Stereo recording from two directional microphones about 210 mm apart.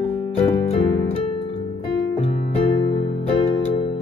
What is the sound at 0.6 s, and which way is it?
Music, 30° left (ahead or behind).